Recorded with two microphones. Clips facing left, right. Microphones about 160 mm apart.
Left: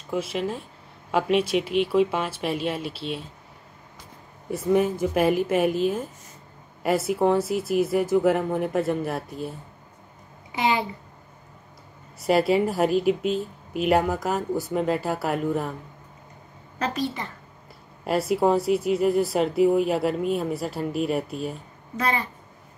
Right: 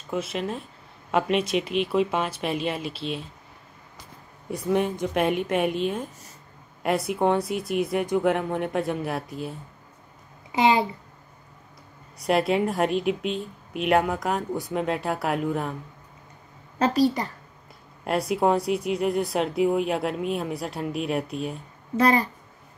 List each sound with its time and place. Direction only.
0.1 s speech: 10° left (ahead or behind)
4.5 s speech: centre (ahead or behind)
10.6 s speech: 25° right (ahead or behind)
12.2 s speech: centre (ahead or behind)
16.7 s a woman's voice: 35° right (ahead or behind)
18.0 s speech: centre (ahead or behind)
21.9 s a woman's voice: 40° right (ahead or behind)